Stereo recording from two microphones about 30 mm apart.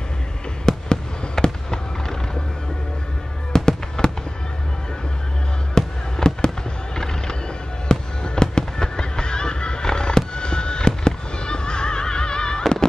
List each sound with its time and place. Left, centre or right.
0.7 s fireworks: centre
3.5 s fireworks: left
5.8 s fireworks: left
7.9 s fireworks: left